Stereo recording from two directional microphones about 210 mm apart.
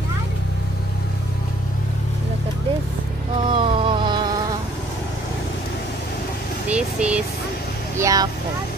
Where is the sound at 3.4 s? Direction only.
25° right (ahead or behind).